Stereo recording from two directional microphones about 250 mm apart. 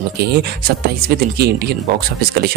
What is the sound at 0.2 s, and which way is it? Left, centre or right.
A man's voice, right.